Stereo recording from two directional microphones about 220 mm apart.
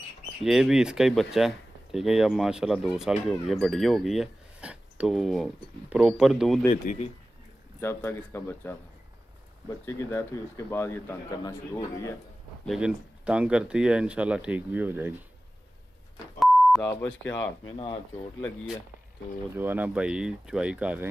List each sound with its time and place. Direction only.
0.4 s speech: centre (ahead or behind)
6.7 s speech: 35° left (ahead or behind)
7.8 s speech: 10° left (ahead or behind)
12.6 s speech: 5° right (ahead or behind)
16.3 s beep: centre (ahead or behind)
19.5 s speech: 10° right (ahead or behind)